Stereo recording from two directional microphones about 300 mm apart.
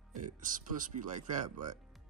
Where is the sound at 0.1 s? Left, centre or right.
Right.